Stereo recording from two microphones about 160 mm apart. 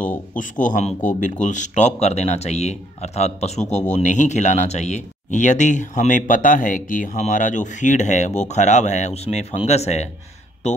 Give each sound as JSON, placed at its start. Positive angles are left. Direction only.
{"t": 0.0, "sound": "a man's voice", "side_deg": 10}
{"t": 0.4, "sound": "speech", "side_deg": 55}